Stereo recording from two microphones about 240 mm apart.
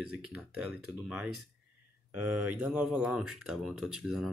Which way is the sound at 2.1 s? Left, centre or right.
Right.